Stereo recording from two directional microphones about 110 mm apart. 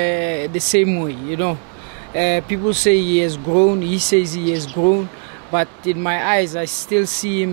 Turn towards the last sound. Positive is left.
turn(degrees=10)  # may be behind; listen again after turning